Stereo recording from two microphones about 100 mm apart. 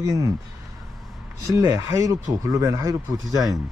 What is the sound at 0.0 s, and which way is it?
Speech, 35° right (ahead or behind).